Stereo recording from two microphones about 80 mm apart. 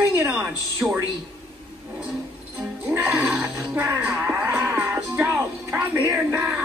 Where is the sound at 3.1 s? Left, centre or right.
Centre.